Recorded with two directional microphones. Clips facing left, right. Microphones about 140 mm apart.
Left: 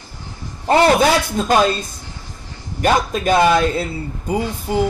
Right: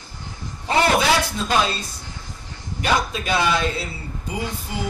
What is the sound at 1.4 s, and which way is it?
Speech, 50° left (ahead or behind).